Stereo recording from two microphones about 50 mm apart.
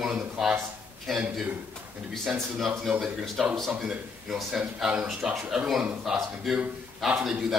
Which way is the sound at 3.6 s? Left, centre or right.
Centre.